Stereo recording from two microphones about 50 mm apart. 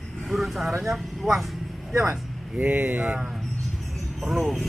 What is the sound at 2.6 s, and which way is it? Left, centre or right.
Speech, right.